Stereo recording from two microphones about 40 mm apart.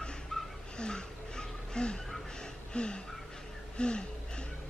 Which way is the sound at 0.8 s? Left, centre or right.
Left.